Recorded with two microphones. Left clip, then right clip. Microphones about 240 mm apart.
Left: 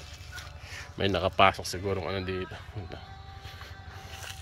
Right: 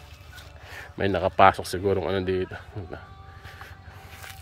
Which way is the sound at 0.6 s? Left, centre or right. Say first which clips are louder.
Right 3 dB; right.